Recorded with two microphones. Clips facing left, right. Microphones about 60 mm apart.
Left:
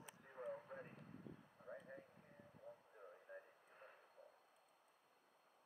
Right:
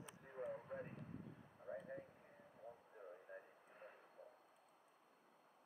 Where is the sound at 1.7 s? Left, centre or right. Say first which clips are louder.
Right 5 dB; centre.